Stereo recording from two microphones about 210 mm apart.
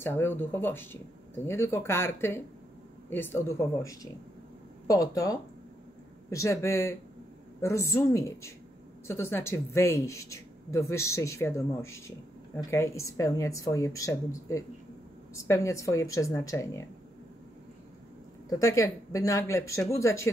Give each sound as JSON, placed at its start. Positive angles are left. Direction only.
{"t": 0.0, "sound": "speech", "side_deg": 10}
{"t": 15.4, "sound": "speech", "side_deg": 15}
{"t": 18.5, "sound": "speech", "side_deg": 15}